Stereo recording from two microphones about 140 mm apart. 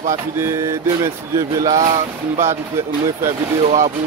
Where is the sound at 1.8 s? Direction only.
60° right (ahead or behind).